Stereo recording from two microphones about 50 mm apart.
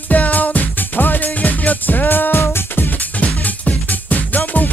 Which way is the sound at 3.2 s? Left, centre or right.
Left.